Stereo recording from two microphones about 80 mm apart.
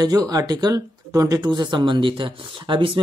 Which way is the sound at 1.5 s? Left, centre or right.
Right.